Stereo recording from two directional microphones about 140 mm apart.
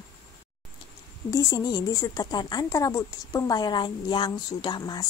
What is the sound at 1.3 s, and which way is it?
Speech, 25° left (ahead or behind).